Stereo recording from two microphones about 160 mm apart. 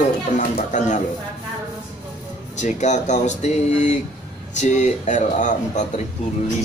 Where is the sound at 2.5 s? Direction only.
50° left (ahead or behind).